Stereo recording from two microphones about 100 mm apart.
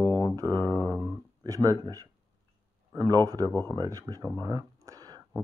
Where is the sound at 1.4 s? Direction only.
35° right (ahead or behind).